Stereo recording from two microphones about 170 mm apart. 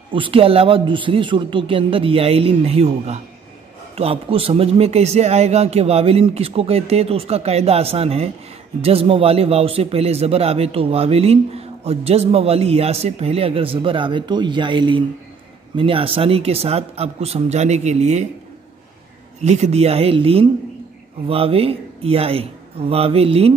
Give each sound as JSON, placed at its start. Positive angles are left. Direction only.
{"t": 0.1, "sound": "speech", "side_deg": -30}
{"t": 19.4, "sound": "speech", "side_deg": -40}